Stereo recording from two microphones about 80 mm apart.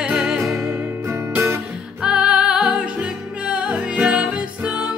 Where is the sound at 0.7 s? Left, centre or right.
Right.